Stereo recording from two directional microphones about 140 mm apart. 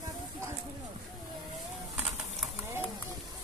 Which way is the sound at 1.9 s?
5° right (ahead or behind).